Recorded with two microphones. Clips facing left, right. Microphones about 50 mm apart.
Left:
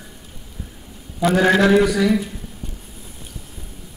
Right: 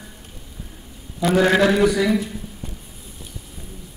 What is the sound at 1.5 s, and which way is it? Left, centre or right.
Speech, centre.